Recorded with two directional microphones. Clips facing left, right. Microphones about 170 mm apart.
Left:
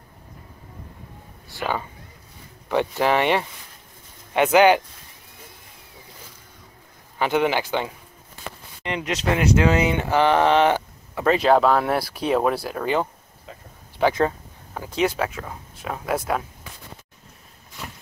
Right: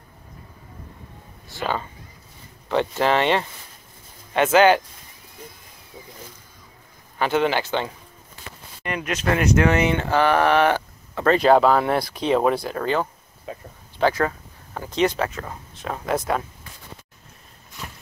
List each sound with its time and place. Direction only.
1.6 s speech: 15° left (ahead or behind)
7.2 s speech: 15° left (ahead or behind)
11.2 s speech: 5° left (ahead or behind)